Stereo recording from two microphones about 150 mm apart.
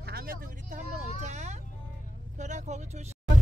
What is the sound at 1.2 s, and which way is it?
Vehicle, 50° right (ahead or behind).